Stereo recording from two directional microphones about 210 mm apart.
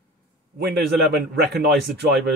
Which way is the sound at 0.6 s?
50° right (ahead or behind).